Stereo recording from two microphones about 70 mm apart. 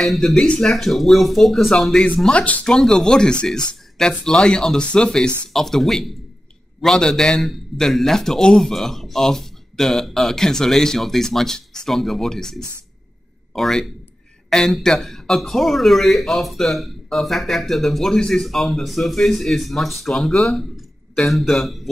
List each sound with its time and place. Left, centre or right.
0.0 s a man's voice: centre
2.4 s speech: centre
2.7 s a man's voice: centre